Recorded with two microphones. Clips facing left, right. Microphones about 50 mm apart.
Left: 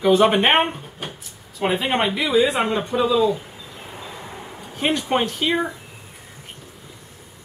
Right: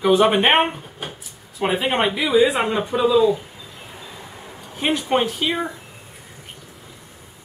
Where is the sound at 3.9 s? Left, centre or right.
Centre.